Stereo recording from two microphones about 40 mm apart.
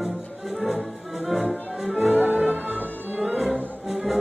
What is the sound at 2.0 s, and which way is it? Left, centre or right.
Music, right.